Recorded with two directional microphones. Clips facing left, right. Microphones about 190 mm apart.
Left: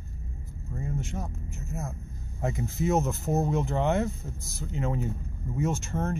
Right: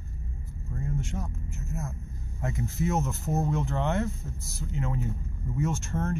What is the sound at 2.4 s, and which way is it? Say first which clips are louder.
Speech: left 1 dB; 25° left (ahead or behind).